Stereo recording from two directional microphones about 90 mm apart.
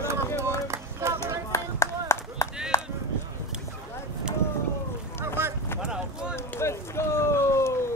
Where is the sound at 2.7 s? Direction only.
35° left (ahead or behind).